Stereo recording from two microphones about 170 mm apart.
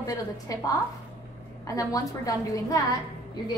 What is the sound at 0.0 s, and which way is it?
Speech, 20° left (ahead or behind).